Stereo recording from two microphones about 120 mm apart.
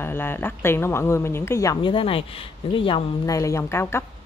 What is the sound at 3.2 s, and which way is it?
Speech, 25° left (ahead or behind).